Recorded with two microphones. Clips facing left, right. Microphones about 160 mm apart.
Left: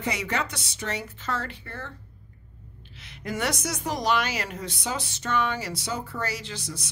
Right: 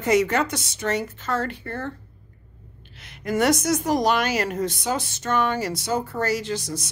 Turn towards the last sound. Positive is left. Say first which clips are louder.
# right 9 dB
turn(degrees=-45)  # may be behind; listen again after turning